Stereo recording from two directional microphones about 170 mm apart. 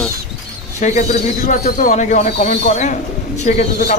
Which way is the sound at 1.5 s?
55° left (ahead or behind).